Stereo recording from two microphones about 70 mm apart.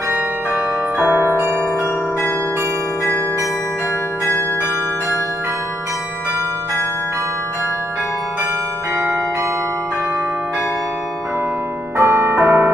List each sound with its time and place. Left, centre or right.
0.9 s music: right
12.0 s music: right